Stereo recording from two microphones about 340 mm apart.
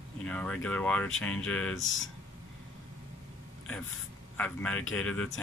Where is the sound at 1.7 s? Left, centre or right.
Left.